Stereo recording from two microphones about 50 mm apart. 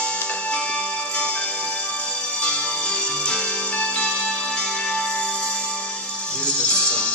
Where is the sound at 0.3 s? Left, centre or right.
Left.